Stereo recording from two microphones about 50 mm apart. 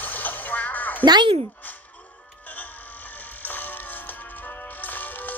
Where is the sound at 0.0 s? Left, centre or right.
Left.